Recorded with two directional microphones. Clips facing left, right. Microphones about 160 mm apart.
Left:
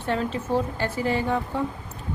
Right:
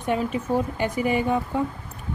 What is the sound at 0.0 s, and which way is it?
Speech, 15° right (ahead or behind).